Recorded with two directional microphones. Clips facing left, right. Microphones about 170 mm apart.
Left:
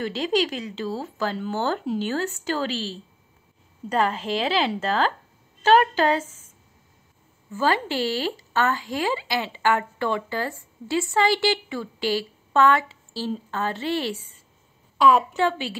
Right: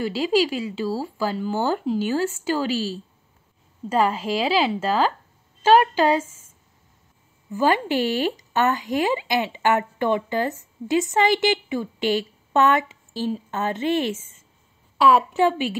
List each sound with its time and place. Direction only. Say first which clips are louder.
0.0 s speech: right 3 dB; 10° right (ahead or behind)
7.5 s speech: right 3 dB; 15° right (ahead or behind)
15.0 s a woman's voice: right 1 dB; 5° right (ahead or behind)
15.3 s speech: right 4 dB; 15° right (ahead or behind)